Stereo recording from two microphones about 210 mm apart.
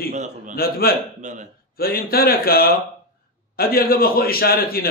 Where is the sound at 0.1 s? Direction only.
35° right (ahead or behind).